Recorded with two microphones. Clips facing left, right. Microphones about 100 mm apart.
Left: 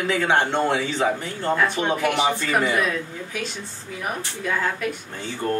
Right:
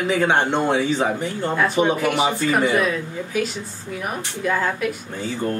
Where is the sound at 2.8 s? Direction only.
Centre (ahead or behind).